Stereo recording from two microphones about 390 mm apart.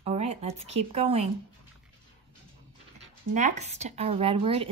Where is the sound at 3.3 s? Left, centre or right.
Centre.